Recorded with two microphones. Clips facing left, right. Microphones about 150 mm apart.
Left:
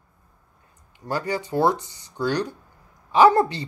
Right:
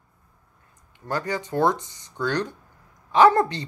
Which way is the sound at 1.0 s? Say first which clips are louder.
Left 1 dB; 10° left (ahead or behind).